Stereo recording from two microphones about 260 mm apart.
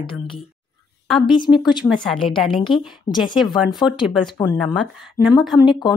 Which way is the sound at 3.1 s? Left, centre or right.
Centre.